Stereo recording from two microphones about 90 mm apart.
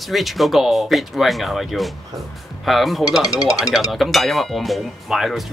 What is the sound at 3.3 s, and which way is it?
Speech, 45° left (ahead or behind).